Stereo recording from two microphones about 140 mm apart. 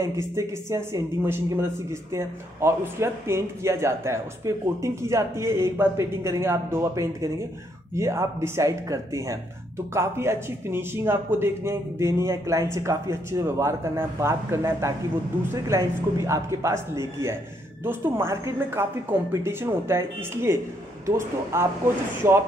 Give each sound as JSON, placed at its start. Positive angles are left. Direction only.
{"t": 0.0, "sound": "speech", "side_deg": -20}